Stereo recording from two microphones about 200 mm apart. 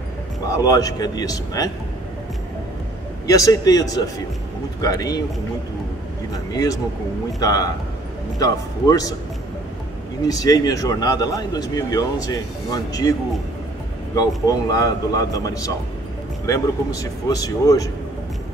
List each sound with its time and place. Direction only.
0.6 s speech: 15° left (ahead or behind)
3.3 s speech: 15° left (ahead or behind)
6.3 s speech: 20° left (ahead or behind)
10.2 s speech: 20° left (ahead or behind)
14.1 s speech: 20° left (ahead or behind)